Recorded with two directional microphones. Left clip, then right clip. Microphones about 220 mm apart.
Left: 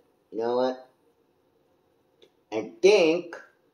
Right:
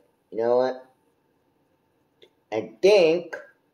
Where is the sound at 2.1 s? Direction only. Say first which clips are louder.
Right 3 dB; 10° right (ahead or behind).